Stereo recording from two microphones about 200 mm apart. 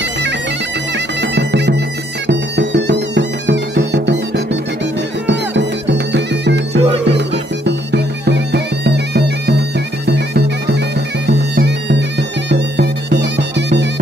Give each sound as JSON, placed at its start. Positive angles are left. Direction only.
{"t": 0.9, "sound": "bagpipes", "side_deg": -60}
{"t": 2.2, "sound": "music", "side_deg": -60}
{"t": 11.2, "sound": "bagpipes", "side_deg": -55}